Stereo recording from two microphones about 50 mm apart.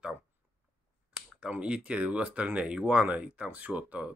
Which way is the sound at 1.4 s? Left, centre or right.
Right.